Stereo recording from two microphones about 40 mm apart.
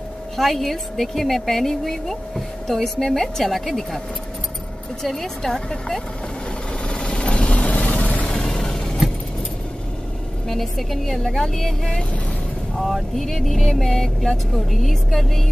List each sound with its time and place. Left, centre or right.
0.4 s a woman's voice: centre
5.0 s speech: centre
6.9 s vehicle: left
8.3 s music: centre
10.5 s a woman's voice: centre